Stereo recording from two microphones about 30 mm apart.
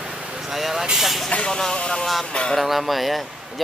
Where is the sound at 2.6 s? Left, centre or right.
Centre.